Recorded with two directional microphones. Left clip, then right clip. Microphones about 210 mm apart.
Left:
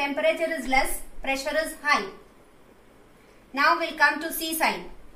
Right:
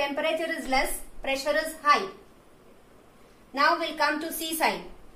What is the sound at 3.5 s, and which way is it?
Speech, centre (ahead or behind).